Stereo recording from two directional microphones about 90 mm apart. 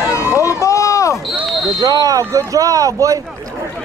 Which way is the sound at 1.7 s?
45° right (ahead or behind).